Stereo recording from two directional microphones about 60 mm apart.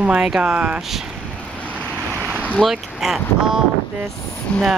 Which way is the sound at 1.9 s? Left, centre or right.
Right.